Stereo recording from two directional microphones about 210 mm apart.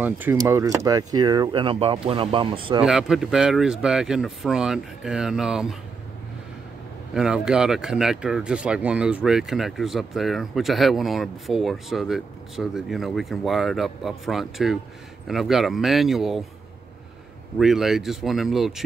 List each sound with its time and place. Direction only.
0.0 s speech: 10° right (ahead or behind)
2.8 s speech: 5° right (ahead or behind)
7.2 s speech: 5° right (ahead or behind)
17.6 s speech: centre (ahead or behind)